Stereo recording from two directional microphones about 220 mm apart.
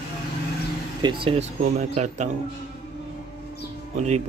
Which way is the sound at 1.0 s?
20° right (ahead or behind).